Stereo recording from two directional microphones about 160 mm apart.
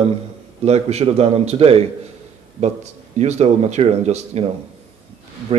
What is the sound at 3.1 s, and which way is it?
A man's voice, 45° right (ahead or behind).